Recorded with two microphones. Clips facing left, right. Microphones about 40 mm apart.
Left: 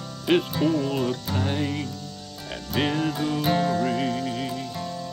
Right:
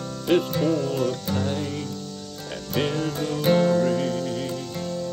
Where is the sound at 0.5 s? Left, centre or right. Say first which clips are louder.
Even; centre.